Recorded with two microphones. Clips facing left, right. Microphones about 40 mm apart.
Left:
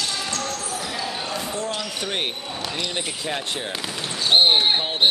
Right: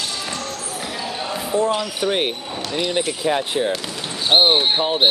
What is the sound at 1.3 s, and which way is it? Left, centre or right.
Basketball bounce, centre.